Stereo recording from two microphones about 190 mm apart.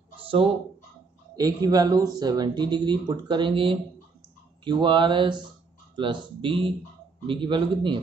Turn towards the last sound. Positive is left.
turn(degrees=-25)  # may be behind; listen again after turning